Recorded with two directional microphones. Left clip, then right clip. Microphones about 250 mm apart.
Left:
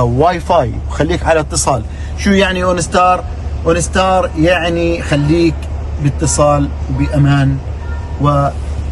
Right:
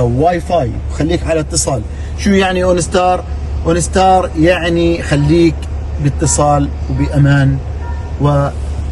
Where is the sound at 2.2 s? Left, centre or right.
Centre.